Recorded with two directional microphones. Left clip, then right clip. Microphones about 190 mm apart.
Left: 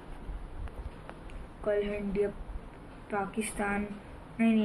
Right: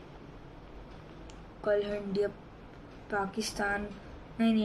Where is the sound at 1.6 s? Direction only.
20° right (ahead or behind).